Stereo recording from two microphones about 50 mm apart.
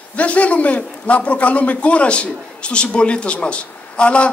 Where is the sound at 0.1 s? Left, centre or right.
Left.